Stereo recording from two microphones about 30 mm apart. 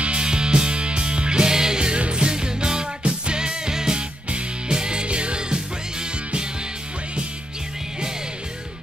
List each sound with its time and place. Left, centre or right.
0.0 s music: right
0.3 s music: right
3.0 s music: right
3.3 s music: right